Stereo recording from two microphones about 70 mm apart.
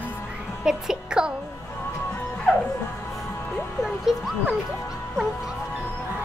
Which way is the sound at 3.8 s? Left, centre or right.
Centre.